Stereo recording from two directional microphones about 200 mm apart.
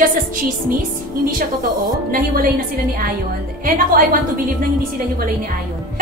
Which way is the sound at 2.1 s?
45° right (ahead or behind).